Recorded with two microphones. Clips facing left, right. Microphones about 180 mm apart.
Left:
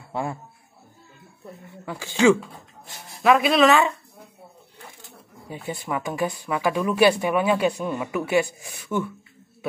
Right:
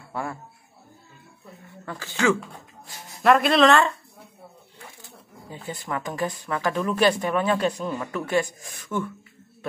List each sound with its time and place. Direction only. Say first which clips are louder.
0.1 s speech: left 3 dB; 20° left (ahead or behind)
1.9 s speech: left 5 dB; 15° left (ahead or behind)
3.2 s speech: even; centre (ahead or behind)
5.5 s speech: left 3 dB; 10° left (ahead or behind)